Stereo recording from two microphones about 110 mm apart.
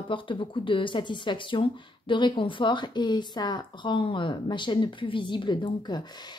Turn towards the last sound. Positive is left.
turn(degrees=45)  # may be behind; listen again after turning